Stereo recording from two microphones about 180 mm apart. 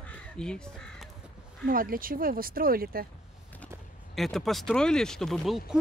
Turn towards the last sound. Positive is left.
turn(degrees=0)  # may be behind; listen again after turning